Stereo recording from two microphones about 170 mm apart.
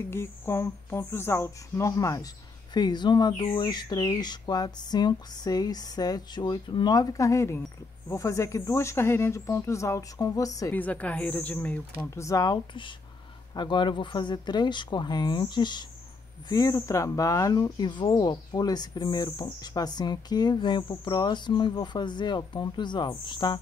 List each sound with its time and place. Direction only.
0.1 s speech: 15° left (ahead or behind)
10.8 s speech: 10° left (ahead or behind)
12.0 s speech: 20° left (ahead or behind)